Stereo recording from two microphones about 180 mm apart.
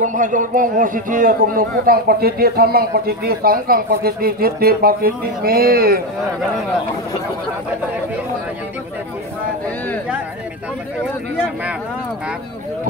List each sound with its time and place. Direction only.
0.0 s a man's voice: 45° right (ahead or behind)